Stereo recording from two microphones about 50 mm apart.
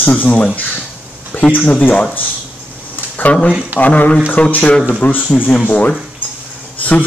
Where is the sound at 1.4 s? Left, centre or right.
Left.